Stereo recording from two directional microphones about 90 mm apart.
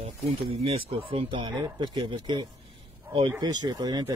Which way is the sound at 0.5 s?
90° right.